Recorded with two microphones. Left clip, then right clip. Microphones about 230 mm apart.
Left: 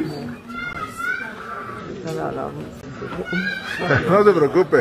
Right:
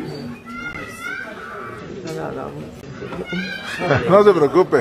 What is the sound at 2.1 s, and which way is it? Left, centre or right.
Speech, centre.